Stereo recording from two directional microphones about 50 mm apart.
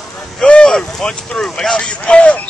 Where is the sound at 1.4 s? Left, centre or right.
Centre.